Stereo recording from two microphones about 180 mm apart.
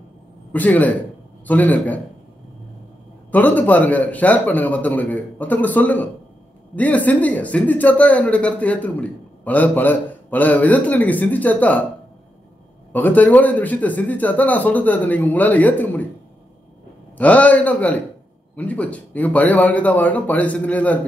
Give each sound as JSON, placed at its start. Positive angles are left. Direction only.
{"t": 0.5, "sound": "speech", "side_deg": 10}
{"t": 3.3, "sound": "speech", "side_deg": 10}
{"t": 12.9, "sound": "speech", "side_deg": 10}
{"t": 17.2, "sound": "speech", "side_deg": 10}